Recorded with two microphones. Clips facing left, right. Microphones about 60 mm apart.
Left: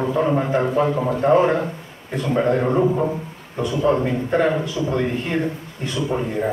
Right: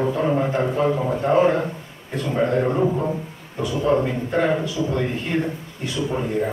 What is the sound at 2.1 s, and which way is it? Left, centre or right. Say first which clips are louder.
Speech: left 2 dB; centre.